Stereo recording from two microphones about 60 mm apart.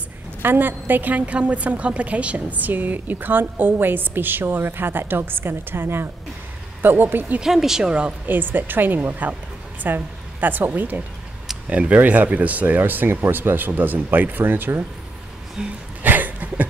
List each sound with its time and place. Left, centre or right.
0.4 s a woman's voice: right
7.4 s speech: centre
8.3 s a woman's voice: right
15.6 s speech: centre
16.0 s a sound: right